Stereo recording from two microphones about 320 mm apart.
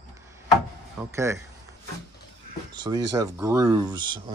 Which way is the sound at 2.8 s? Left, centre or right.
Centre.